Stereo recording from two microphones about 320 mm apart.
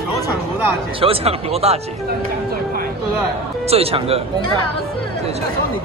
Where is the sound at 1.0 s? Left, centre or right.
Centre.